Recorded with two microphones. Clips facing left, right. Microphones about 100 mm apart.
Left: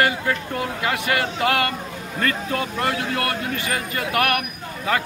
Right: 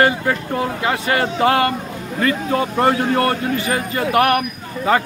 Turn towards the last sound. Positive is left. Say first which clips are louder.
# right 6 dB
turn(degrees=-30)  # may be behind; listen again after turning